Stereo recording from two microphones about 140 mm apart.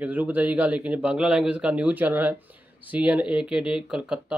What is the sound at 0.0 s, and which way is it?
Speech, 10° right (ahead or behind).